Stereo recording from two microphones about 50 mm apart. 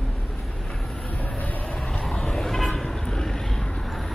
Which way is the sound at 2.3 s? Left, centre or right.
Centre.